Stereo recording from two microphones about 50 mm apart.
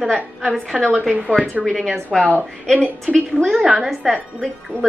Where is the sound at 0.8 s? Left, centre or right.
Centre.